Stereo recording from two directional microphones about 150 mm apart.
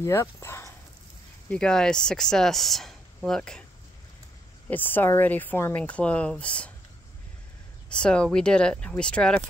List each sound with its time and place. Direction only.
0.0 s speech: 20° left (ahead or behind)
1.5 s speech: 5° left (ahead or behind)
4.6 s speech: 10° left (ahead or behind)
7.9 s speech: 5° left (ahead or behind)